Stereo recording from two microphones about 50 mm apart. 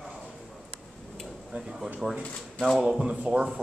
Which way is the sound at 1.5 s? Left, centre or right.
Centre.